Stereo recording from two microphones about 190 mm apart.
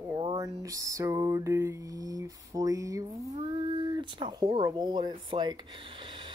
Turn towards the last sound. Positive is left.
turn(degrees=-25)  # may be behind; listen again after turning